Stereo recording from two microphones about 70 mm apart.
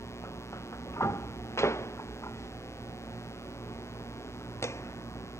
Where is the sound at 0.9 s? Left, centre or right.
Left.